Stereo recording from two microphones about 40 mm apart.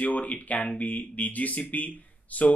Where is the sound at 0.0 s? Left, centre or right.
Left.